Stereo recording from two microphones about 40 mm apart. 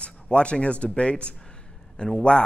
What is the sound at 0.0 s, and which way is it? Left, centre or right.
Speech, left.